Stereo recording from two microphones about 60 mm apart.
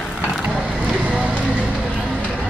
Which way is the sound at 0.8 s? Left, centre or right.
Centre.